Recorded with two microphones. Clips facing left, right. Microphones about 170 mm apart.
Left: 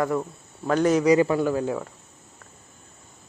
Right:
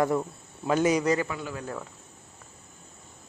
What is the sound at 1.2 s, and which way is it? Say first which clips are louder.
Speech: left 12 dB; 40° left (ahead or behind).